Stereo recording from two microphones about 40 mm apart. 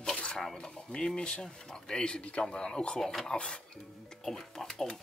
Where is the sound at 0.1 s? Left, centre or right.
Left.